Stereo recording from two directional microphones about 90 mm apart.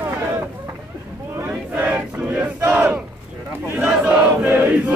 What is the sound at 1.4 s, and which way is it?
Battle cry, 20° right (ahead or behind).